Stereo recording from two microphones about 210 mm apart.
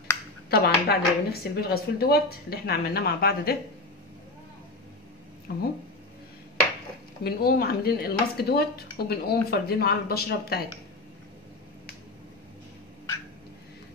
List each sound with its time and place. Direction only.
0.5 s speech: 50° left (ahead or behind)
5.5 s speech: 50° left (ahead or behind)
7.2 s speech: 50° left (ahead or behind)